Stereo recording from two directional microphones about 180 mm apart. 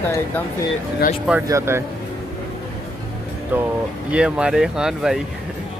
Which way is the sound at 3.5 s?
10° right (ahead or behind).